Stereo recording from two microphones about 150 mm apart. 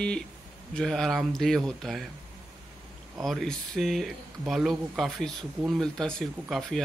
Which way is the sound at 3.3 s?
Centre (ahead or behind).